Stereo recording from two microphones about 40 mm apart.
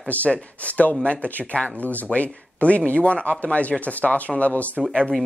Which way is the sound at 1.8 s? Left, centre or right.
Left.